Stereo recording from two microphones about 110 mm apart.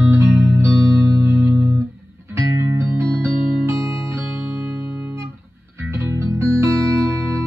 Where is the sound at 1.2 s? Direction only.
25° right (ahead or behind).